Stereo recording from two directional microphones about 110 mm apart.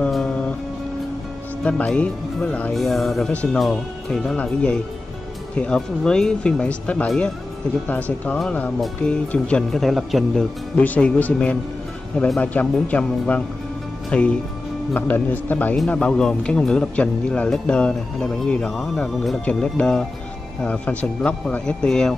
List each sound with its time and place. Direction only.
0.0 s music: 10° left (ahead or behind)
1.6 s speech: 10° left (ahead or behind)
8.4 s speech: 10° left (ahead or behind)
10.8 s speech: 10° left (ahead or behind)